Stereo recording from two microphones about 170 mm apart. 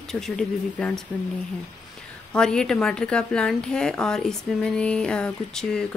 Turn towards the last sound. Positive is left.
turn(degrees=5)  # may be behind; listen again after turning